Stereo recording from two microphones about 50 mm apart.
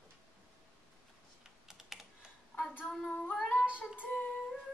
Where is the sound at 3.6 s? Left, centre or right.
Right.